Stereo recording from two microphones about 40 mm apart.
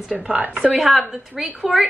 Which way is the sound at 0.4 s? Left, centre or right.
Right.